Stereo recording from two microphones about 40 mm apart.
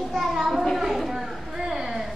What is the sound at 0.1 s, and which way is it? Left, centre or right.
Children playing, centre.